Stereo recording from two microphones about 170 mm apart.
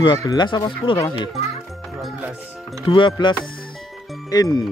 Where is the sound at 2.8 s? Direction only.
30° left (ahead or behind).